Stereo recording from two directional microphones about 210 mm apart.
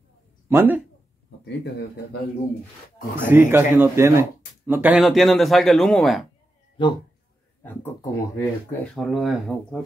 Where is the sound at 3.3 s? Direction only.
10° right (ahead or behind).